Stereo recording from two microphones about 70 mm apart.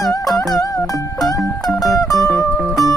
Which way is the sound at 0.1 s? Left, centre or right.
Left.